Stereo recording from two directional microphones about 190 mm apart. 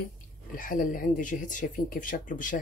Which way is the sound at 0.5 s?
45° left (ahead or behind).